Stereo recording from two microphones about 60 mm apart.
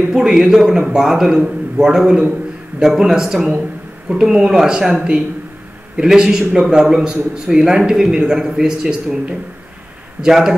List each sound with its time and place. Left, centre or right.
0.1 s a man's voice: centre
10.2 s a man's voice: centre